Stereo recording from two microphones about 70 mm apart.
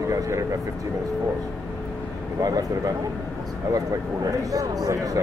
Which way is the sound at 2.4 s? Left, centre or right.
Right.